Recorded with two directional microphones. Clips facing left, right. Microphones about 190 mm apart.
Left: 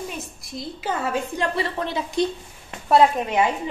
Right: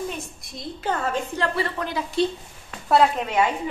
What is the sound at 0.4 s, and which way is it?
Speech, centre (ahead or behind).